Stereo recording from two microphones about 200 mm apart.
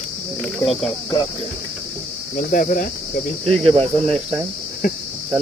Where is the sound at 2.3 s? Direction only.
45° left (ahead or behind).